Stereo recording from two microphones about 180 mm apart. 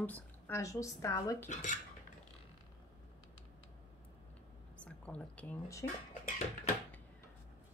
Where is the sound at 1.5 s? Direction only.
40° left (ahead or behind).